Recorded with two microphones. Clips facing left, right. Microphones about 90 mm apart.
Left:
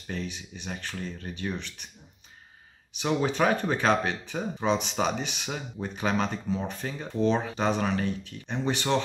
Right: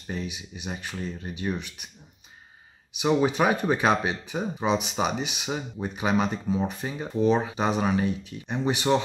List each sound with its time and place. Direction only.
0.0 s speech: 15° right (ahead or behind)
2.9 s speech: 10° right (ahead or behind)